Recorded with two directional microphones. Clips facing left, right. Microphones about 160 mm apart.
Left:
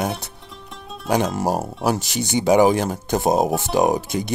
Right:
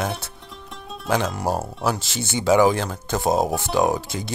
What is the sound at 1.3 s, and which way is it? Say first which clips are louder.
Speech: left 3 dB; 15° left (ahead or behind).